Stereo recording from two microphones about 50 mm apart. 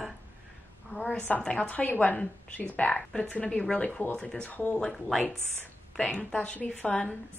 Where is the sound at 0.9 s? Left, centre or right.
Right.